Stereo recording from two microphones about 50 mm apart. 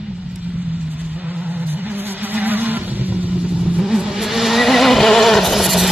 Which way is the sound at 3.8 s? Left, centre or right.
Centre.